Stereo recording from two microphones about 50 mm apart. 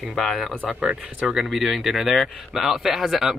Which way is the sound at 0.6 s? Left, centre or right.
Right.